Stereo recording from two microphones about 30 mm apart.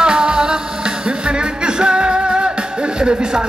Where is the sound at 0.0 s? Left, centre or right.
Right.